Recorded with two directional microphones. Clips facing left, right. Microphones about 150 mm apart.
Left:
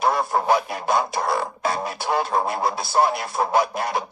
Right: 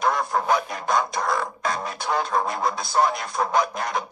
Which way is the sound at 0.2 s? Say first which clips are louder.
Left 2 dB; 30° left (ahead or behind).